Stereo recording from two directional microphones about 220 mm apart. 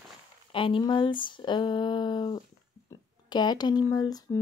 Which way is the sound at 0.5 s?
25° left (ahead or behind).